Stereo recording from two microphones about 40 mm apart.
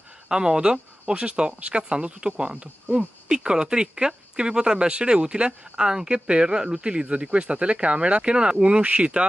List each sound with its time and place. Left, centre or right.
0.3 s speech: centre
3.3 s speech: centre